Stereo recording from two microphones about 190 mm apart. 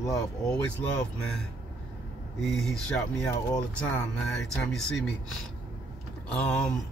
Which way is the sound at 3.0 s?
15° left (ahead or behind).